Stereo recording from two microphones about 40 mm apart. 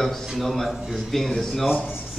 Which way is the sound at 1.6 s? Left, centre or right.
Centre.